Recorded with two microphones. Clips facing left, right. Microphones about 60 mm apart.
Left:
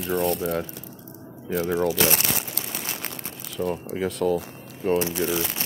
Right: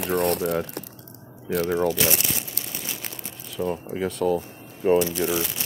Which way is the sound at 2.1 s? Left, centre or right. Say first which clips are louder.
Left 2 dB; left.